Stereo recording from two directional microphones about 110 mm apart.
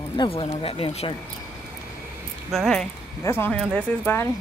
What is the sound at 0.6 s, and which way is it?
Speech, 60° left (ahead or behind).